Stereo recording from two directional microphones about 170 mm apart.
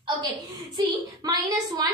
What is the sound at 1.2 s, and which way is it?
Speech, 25° right (ahead or behind).